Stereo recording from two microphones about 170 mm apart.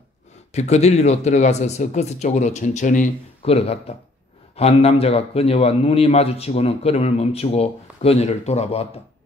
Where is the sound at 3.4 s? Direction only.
35° left (ahead or behind).